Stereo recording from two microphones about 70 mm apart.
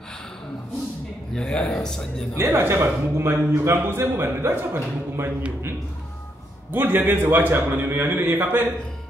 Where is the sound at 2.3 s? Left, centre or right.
Right.